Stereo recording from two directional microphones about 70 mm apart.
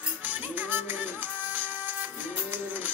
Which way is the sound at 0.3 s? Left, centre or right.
Right.